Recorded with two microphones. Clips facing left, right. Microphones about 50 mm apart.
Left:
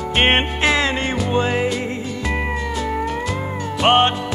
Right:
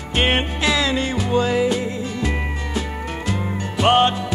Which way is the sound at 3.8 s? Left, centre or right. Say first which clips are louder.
Left 1 dB; left.